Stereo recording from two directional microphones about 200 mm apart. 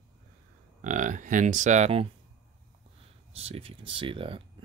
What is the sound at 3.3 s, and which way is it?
Speech, 30° right (ahead or behind).